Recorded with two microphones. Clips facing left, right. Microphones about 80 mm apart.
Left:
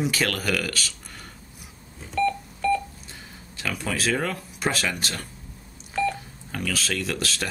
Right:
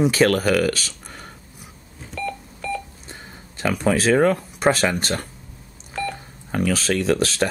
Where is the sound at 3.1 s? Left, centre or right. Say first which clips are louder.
Right 4 dB; right.